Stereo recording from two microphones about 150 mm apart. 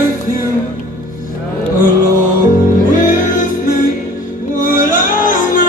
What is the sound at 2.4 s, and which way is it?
Music, 60° left (ahead or behind).